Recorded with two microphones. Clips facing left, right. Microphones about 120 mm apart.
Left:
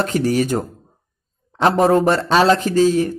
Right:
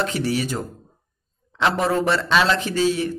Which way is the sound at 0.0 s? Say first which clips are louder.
Left 5 dB; 45° left (ahead or behind).